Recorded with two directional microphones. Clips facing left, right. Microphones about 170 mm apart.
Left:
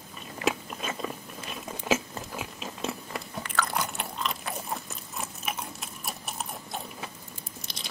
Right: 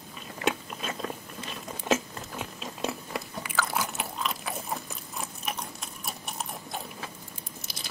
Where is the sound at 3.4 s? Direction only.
5° right (ahead or behind).